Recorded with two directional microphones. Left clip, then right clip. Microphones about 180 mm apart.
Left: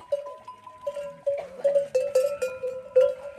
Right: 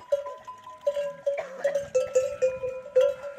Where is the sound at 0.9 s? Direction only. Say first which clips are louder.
Right 2 dB; 30° right (ahead or behind).